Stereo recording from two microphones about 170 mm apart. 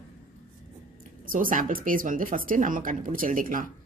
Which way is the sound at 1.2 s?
55° right (ahead or behind).